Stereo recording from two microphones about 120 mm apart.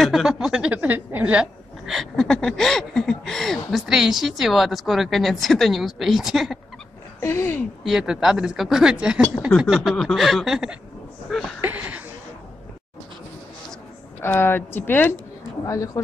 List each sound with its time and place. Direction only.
0.0 s a woman's voice: 5° right (ahead or behind)
7.2 s speech: 20° left (ahead or behind)
7.8 s a woman's voice: 5° right (ahead or behind)
11.6 s a sound: 15° right (ahead or behind)
14.2 s a woman's voice: 15° left (ahead or behind)
15.6 s speech: 30° left (ahead or behind)